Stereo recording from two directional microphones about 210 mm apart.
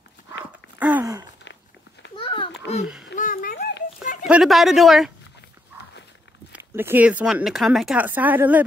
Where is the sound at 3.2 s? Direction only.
40° left (ahead or behind).